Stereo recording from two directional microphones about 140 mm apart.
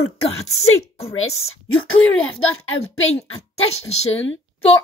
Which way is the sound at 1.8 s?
10° left (ahead or behind).